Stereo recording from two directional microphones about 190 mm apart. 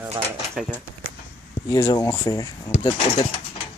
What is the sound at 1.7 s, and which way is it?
Speech, 20° left (ahead or behind).